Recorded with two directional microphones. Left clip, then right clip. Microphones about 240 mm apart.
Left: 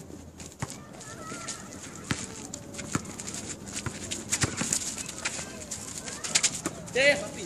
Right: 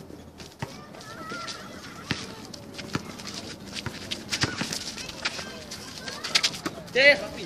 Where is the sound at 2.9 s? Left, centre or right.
Centre.